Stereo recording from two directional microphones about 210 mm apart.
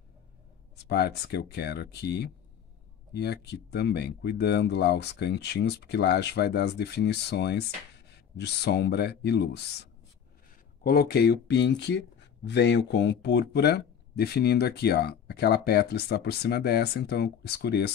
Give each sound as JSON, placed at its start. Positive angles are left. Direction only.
{"t": 0.8, "sound": "speech", "side_deg": 50}